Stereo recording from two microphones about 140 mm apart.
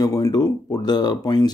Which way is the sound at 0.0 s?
25° left (ahead or behind).